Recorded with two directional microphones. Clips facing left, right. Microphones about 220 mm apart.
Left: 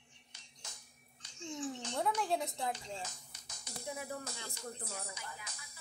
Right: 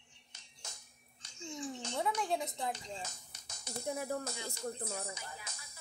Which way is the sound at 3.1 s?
45° right (ahead or behind).